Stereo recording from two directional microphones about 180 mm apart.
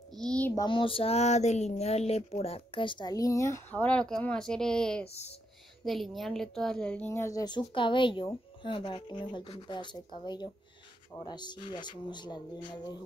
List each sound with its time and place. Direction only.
0.1 s a sound: 5° left (ahead or behind)
0.6 s a woman's voice: 30° left (ahead or behind); by 5.0 s 5° left (ahead or behind)
5.0 s speech: 35° left (ahead or behind)
5.9 s a woman's voice: centre (ahead or behind); by 13.0 s 25° left (ahead or behind)